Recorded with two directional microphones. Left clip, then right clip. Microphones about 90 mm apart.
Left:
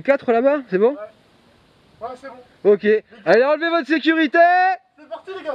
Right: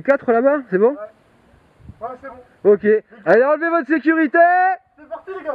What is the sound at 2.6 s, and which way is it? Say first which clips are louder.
Speech: right 1 dB; 5° left (ahead or behind).